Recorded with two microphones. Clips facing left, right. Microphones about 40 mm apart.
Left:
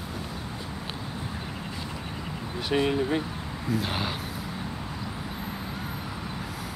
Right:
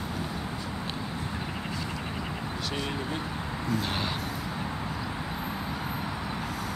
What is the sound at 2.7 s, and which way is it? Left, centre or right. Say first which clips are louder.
Speech: left 11 dB; centre.